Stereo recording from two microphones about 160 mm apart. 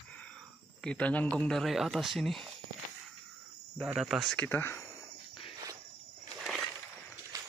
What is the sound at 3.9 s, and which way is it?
Speech, centre (ahead or behind).